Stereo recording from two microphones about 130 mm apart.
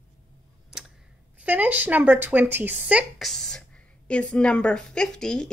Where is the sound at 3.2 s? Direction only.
5° left (ahead or behind).